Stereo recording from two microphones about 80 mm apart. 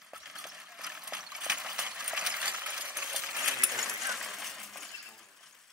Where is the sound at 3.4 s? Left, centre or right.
Centre.